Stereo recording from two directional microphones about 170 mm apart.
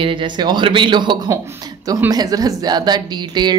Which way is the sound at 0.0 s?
30° right (ahead or behind).